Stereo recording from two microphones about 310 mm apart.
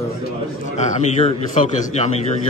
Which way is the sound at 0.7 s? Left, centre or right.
Left.